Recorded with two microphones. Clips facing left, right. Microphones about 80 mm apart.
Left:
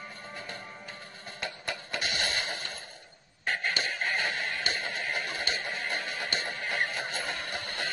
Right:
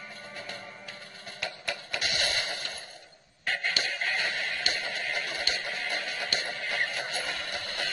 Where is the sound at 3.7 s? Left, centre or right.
Left.